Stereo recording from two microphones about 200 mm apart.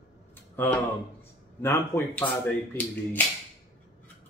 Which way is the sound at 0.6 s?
10° left (ahead or behind).